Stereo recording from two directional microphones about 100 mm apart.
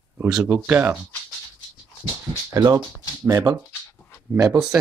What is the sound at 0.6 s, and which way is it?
Speech, 20° right (ahead or behind).